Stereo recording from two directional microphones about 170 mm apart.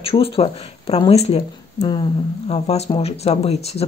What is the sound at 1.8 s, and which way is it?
Speech, 25° left (ahead or behind).